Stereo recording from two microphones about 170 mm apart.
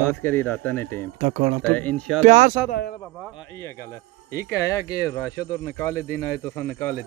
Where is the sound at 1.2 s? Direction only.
45° right (ahead or behind).